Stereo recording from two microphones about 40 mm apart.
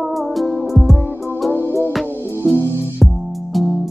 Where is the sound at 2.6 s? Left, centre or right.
Right.